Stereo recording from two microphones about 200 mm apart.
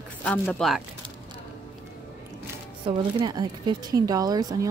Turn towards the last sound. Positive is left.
turn(degrees=-20)  # may be behind; listen again after turning